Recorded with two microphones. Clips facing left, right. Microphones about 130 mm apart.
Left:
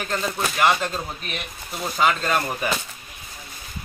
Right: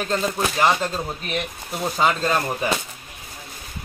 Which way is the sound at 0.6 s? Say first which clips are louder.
Even; 30° right (ahead or behind).